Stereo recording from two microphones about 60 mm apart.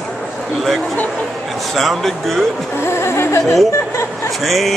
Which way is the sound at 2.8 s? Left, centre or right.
Left.